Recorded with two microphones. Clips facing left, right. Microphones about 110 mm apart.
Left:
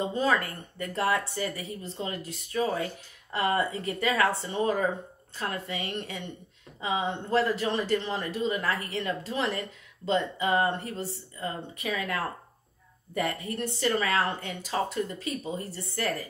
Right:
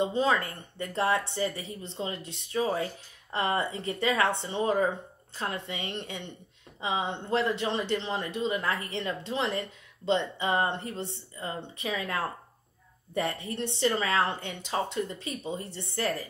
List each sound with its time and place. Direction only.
0.0 s speech: 25° right (ahead or behind)